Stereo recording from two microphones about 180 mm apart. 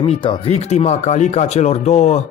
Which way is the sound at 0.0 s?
30° left (ahead or behind).